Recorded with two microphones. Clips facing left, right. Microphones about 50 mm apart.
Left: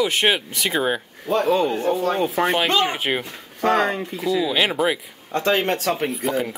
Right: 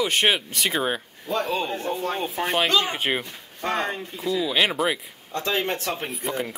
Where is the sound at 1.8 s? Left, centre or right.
Left.